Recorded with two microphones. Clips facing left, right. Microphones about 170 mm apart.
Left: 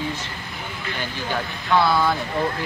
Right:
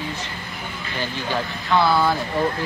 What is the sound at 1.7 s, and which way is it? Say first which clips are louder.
Speech: even; centre (ahead or behind).